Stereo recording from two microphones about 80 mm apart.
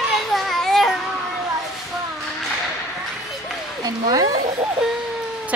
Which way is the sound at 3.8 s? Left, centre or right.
Right.